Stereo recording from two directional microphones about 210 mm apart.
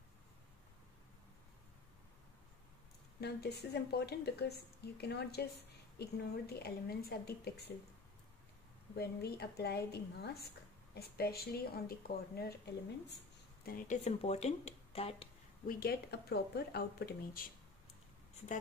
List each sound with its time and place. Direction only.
3.2 s speech: 50° left (ahead or behind)
8.9 s speech: 50° left (ahead or behind)
13.7 s speech: 40° left (ahead or behind)
15.6 s speech: 45° left (ahead or behind)